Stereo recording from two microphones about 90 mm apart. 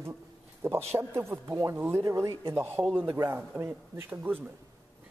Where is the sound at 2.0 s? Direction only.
40° right (ahead or behind).